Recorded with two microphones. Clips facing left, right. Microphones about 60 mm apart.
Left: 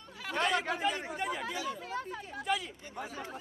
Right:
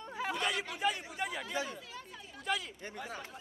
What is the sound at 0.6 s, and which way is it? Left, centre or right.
Speech, left.